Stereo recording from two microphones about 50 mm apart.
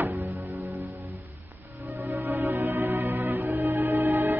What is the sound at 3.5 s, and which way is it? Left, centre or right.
Music, right.